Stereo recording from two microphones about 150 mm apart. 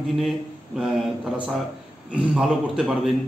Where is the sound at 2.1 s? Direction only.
5° right (ahead or behind).